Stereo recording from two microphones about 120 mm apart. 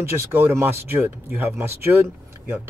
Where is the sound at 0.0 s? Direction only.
20° right (ahead or behind).